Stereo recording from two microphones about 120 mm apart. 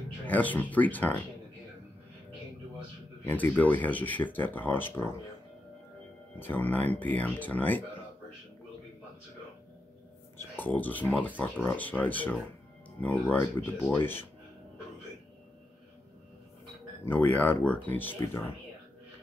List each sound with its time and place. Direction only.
0.3 s speech: 15° left (ahead or behind)
3.3 s speech: 15° left (ahead or behind)
6.4 s speech: 15° left (ahead or behind)
10.3 s speech: 15° left (ahead or behind)
17.0 s speech: 15° left (ahead or behind)